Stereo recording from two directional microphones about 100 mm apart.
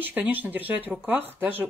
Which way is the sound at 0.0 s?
15° right (ahead or behind).